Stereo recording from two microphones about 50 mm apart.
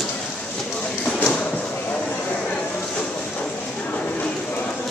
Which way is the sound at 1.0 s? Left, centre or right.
Left.